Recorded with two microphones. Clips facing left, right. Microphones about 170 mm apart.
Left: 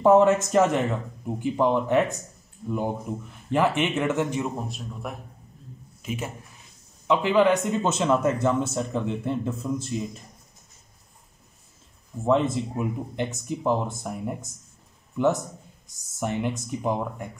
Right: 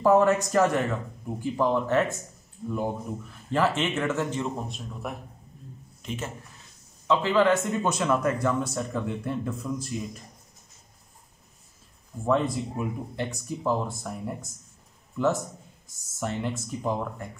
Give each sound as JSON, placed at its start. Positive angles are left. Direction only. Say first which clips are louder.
{"t": 0.0, "sound": "speech", "louder": "left 3 dB", "side_deg": 20}
{"t": 12.3, "sound": "speech", "louder": "left 3 dB", "side_deg": 20}